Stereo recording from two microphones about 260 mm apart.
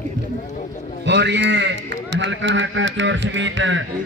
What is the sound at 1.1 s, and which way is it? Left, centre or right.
A man's voice, right.